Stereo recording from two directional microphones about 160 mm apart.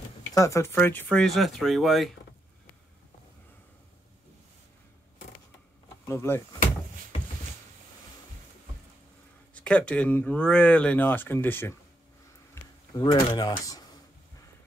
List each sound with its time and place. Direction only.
0.3 s speech: 20° left (ahead or behind); by 2.1 s centre (ahead or behind)
6.0 s speech: 15° left (ahead or behind)
9.5 s speech: 10° left (ahead or behind)
12.6 s a sound: 15° left (ahead or behind)
12.9 s speech: 25° left (ahead or behind)